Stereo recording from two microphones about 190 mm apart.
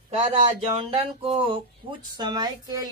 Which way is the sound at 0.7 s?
25° right (ahead or behind).